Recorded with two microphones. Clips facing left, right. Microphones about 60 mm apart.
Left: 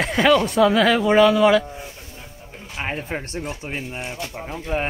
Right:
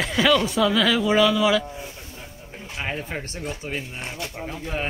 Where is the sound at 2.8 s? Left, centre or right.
Left.